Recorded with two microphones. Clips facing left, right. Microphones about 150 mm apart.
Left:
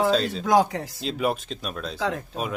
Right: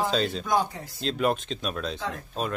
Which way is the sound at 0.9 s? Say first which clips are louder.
Right 1 dB; 5° left (ahead or behind).